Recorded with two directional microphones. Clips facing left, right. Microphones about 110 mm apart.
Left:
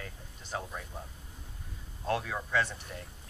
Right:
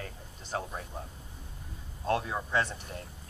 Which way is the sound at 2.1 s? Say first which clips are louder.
Right 2 dB; 25° right (ahead or behind).